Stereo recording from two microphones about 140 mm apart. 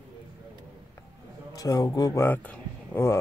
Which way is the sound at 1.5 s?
25° left (ahead or behind).